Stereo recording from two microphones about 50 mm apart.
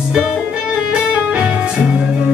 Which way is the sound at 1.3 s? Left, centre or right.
Right.